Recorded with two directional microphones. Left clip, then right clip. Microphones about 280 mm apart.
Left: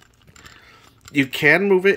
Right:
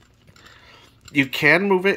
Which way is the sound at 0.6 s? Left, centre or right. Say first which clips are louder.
Left 1 dB; centre.